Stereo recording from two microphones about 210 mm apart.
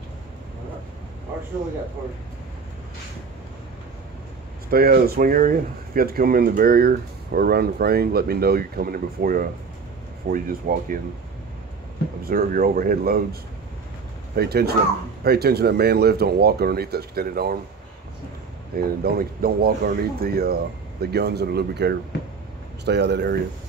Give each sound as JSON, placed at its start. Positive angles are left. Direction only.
{"t": 4.6, "sound": "speech", "side_deg": -45}
{"t": 12.3, "sound": "speech", "side_deg": -45}
{"t": 18.8, "sound": "speech", "side_deg": -45}